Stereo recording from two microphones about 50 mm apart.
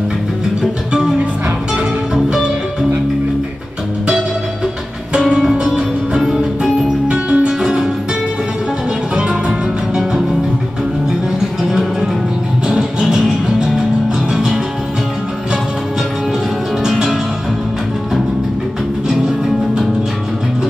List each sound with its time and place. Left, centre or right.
5.3 s music: centre
9.3 s music: centre
14.3 s music: centre
16.8 s music: centre